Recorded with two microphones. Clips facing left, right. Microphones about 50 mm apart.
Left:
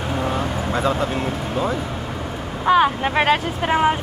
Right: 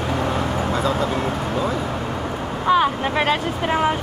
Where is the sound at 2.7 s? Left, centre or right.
Centre.